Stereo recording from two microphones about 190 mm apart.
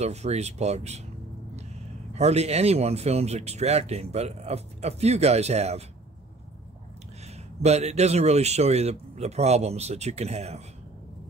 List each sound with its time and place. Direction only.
0.0 s speech: 35° right (ahead or behind)
2.1 s speech: 35° right (ahead or behind)
7.6 s speech: 35° right (ahead or behind)